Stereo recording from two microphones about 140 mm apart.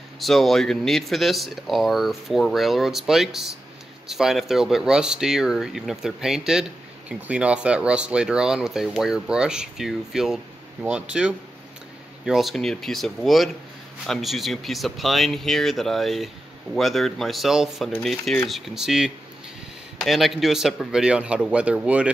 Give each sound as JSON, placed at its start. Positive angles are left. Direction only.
{"t": 0.2, "sound": "speech", "side_deg": 0}